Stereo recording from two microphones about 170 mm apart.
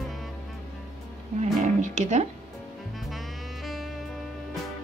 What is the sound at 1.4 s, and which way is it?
Music, 45° right (ahead or behind).